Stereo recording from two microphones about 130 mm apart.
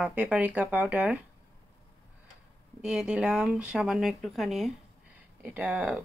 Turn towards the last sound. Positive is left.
turn(degrees=-10)  # may be behind; listen again after turning